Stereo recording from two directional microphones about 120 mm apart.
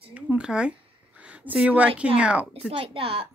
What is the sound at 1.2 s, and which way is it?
Speech, 10° right (ahead or behind).